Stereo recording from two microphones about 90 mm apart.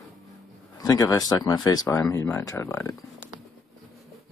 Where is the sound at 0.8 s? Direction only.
40° left (ahead or behind).